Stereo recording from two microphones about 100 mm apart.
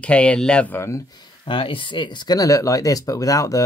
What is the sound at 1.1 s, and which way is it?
Speech, 55° left (ahead or behind).